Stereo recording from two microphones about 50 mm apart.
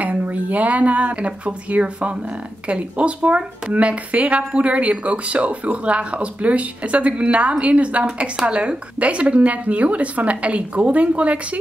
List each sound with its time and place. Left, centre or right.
0.0 s speech: right